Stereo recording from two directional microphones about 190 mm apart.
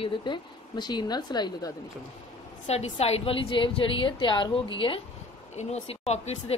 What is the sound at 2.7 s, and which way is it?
Speech, 35° left (ahead or behind).